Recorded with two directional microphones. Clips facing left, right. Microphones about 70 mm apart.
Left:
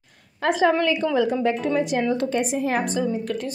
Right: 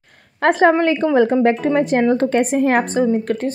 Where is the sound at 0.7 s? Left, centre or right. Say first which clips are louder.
Right 5 dB; right.